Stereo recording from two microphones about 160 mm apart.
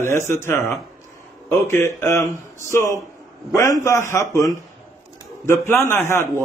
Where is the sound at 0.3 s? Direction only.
15° left (ahead or behind).